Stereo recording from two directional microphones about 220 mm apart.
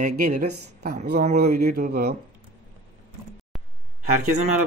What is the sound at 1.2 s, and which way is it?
Speech, 35° right (ahead or behind).